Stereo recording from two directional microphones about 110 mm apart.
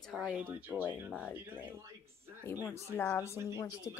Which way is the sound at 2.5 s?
20° left (ahead or behind).